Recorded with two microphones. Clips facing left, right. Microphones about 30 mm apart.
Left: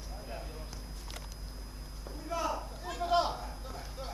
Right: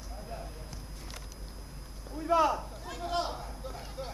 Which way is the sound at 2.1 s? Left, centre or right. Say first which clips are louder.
Right 9 dB; right.